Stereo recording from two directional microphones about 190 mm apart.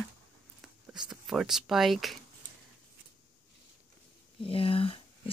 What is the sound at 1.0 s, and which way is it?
Speech, 5° right (ahead or behind).